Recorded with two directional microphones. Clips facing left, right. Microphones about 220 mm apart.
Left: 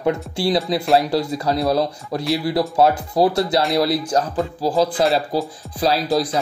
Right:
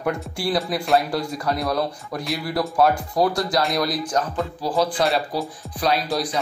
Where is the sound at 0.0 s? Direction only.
25° left (ahead or behind).